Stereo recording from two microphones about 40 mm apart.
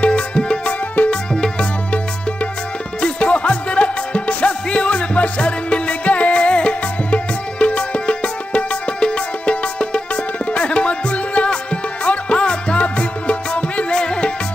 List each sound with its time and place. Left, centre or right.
0.0 s music: left
3.0 s music: left